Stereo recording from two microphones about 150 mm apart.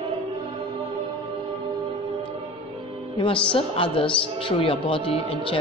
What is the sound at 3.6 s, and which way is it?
Speech, 35° left (ahead or behind).